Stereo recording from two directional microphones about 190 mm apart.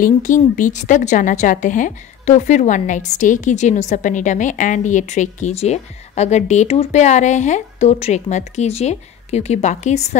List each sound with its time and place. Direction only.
0.0 s a woman's voice: 40° left (ahead or behind)